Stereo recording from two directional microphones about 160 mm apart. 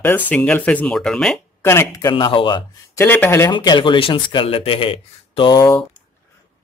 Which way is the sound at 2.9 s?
15° left (ahead or behind).